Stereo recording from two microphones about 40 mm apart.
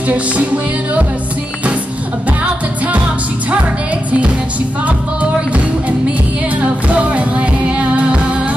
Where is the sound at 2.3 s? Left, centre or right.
Right.